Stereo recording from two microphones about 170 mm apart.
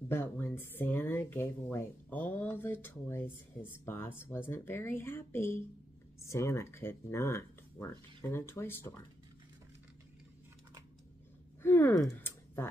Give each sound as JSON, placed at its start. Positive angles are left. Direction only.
{"t": 0.1, "sound": "speech", "side_deg": 15}
{"t": 11.6, "sound": "speech", "side_deg": 15}